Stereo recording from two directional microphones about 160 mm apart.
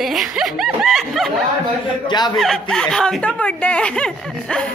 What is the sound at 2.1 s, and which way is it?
Speech, 25° left (ahead or behind).